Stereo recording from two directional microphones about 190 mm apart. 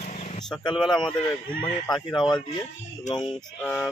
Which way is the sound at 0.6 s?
25° left (ahead or behind).